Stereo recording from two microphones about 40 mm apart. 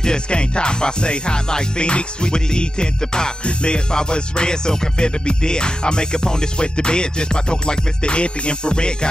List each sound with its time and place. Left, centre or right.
0.0 s music: left